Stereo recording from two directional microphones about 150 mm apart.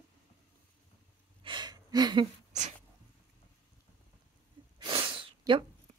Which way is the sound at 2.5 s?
50° right (ahead or behind).